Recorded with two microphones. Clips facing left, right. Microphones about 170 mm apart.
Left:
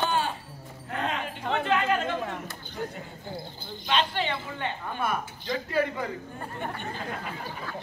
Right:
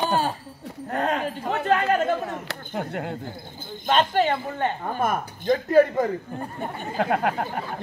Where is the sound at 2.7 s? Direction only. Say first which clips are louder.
Right 8 dB; 70° right (ahead or behind).